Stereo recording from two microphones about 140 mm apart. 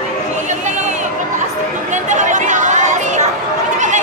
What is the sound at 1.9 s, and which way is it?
Chatter, 60° right (ahead or behind).